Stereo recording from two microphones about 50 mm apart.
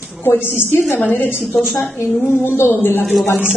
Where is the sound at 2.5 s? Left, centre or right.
Left.